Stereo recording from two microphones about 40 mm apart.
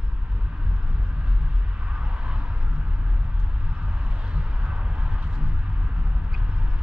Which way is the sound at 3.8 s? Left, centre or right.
Right.